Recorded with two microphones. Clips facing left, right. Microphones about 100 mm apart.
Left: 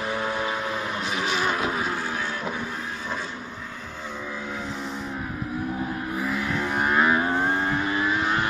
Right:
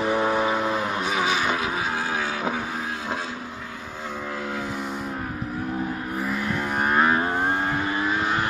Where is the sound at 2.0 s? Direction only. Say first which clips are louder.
Right 3 dB; 90° right.